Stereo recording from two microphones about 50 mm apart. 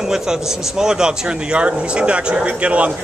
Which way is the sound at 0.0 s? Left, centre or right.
Centre.